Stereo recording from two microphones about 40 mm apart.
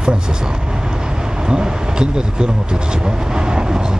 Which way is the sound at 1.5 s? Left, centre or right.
Centre.